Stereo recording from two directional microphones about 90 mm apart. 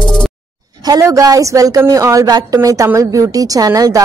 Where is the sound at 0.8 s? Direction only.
40° right (ahead or behind).